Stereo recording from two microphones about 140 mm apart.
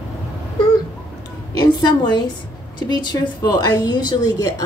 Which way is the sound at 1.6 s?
30° left (ahead or behind).